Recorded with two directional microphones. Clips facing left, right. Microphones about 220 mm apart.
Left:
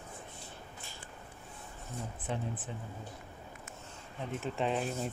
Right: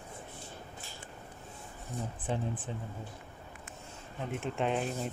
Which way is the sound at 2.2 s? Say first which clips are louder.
Right 3 dB; 30° right (ahead or behind).